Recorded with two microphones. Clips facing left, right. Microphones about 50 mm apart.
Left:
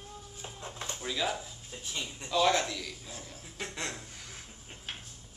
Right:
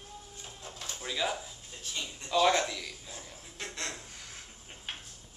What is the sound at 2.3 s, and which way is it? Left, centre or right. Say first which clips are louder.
Speech: right 1 dB; centre.